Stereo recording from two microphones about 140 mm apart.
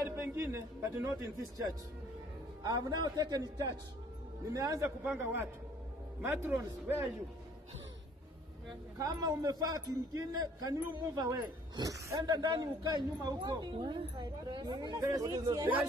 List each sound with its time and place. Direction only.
0.0 s a man's voice: 20° right (ahead or behind)
8.9 s a man's voice: 25° right (ahead or behind)